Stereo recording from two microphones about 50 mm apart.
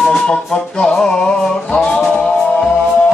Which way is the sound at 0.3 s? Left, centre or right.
Centre.